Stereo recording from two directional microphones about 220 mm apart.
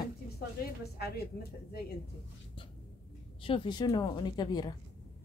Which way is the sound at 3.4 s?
25° left (ahead or behind).